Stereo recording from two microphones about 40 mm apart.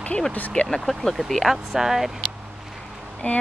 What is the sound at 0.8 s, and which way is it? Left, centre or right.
Speech, centre.